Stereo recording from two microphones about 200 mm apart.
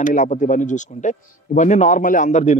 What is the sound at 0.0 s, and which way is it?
Speech, 40° left (ahead or behind).